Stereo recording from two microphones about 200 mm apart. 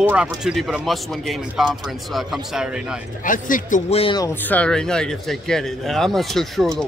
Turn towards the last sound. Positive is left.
turn(degrees=0)  # may be behind; listen again after turning